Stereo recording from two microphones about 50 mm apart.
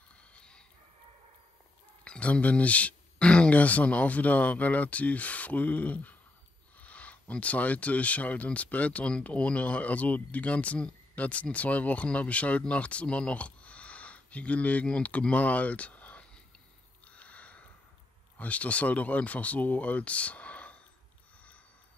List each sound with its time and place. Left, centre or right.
0.2 s a sound: left
2.0 s speech: left
17.0 s sniff: left
18.4 s speech: left